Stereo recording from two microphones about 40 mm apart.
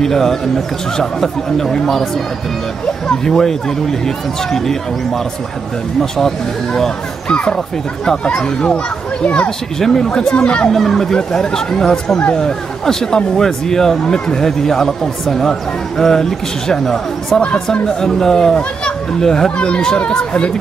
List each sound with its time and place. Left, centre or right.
0.0 s speech: centre
3.3 s speech: centre
5.9 s speech: centre
7.2 s speech: left
9.2 s speech: left
9.8 s speech: centre
10.7 s speech: centre